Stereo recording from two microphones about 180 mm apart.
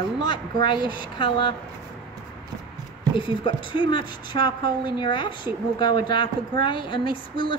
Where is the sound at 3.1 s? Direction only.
25° left (ahead or behind).